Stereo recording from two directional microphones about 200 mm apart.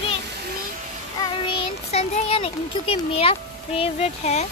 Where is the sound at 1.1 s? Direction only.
30° left (ahead or behind).